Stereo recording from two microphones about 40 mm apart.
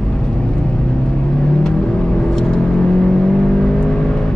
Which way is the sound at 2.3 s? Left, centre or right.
Centre.